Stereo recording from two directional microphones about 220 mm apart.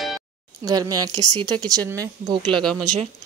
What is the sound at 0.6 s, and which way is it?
Speech, 15° right (ahead or behind).